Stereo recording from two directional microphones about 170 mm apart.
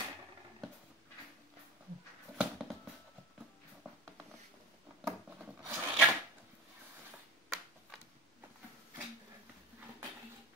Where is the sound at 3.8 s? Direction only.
Centre (ahead or behind).